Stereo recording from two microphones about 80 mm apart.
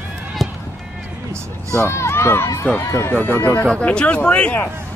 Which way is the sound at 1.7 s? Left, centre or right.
Left.